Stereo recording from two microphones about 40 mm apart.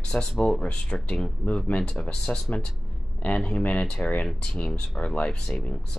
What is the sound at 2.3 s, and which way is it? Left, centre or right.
Speech, left.